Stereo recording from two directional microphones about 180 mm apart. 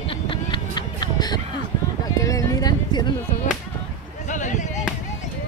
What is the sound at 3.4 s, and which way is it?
Speech, 40° left (ahead or behind).